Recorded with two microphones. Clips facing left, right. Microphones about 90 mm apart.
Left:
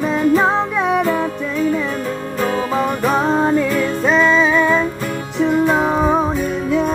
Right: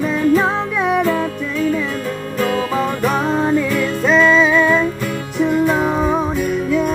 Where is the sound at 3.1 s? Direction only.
25° left (ahead or behind).